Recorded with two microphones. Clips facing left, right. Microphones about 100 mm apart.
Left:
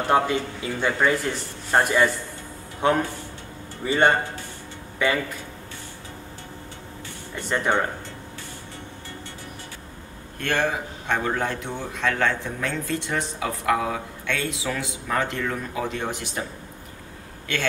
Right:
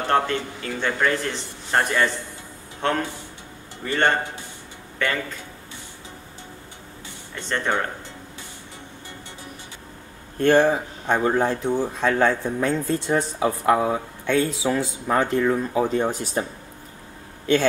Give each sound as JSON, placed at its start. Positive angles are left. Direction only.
{"t": 0.1, "sound": "a man's voice", "side_deg": 15}
{"t": 7.3, "sound": "a man's voice", "side_deg": 10}
{"t": 10.4, "sound": "speech", "side_deg": -35}